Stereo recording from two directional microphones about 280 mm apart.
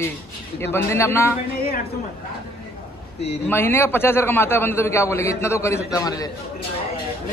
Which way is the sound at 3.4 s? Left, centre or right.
Centre.